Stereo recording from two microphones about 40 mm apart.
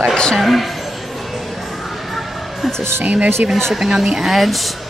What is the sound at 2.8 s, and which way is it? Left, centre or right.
Speech, right.